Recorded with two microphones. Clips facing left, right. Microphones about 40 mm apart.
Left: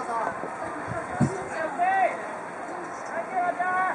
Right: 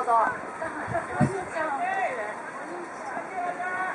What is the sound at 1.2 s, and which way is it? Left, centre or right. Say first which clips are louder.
Speech: even; centre.